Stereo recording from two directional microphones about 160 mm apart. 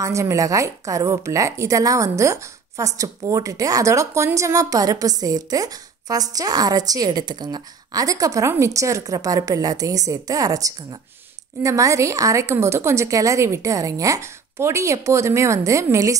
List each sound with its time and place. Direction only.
0.0 s a woman's voice: 20° right (ahead or behind)